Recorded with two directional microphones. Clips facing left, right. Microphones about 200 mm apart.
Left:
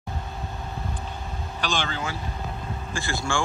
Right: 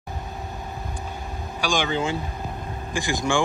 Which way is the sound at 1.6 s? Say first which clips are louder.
Right 5 dB; 15° right (ahead or behind).